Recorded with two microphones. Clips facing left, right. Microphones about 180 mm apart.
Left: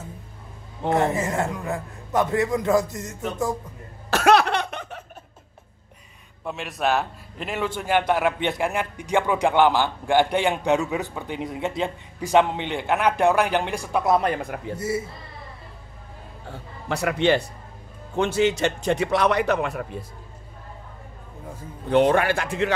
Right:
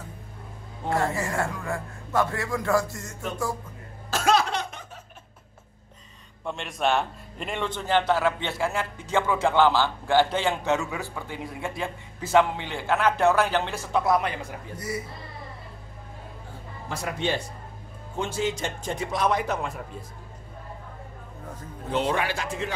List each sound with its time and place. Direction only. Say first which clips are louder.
0.8 s a man's voice: left 4 dB; 20° left (ahead or behind)
4.1 s laughter: left 5 dB; 65° left (ahead or behind)
6.4 s a man's voice: left 1 dB; 5° left (ahead or behind)
14.2 s a man's voice: left 6 dB; 55° left (ahead or behind)
14.8 s a man's voice: left 5 dB; 25° left (ahead or behind)
16.9 s a man's voice: left 8 dB; 70° left (ahead or behind)
21.9 s speech: left 8 dB; 55° left (ahead or behind)